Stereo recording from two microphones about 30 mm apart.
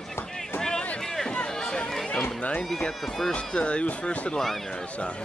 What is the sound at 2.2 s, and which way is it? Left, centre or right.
Speech, left.